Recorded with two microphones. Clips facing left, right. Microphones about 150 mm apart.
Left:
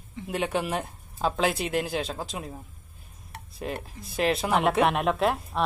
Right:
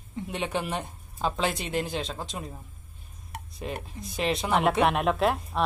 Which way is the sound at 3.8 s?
Centre (ahead or behind).